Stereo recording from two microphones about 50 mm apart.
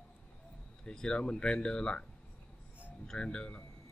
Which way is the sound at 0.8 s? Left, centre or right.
Centre.